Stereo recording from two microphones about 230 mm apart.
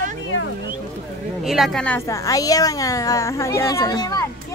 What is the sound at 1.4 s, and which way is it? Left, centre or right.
A woman's voice, centre.